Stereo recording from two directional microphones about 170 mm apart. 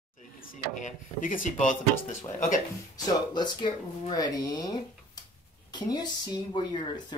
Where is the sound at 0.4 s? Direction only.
50° left (ahead or behind).